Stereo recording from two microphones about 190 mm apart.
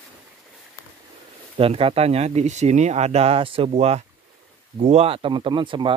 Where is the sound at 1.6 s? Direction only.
30° right (ahead or behind).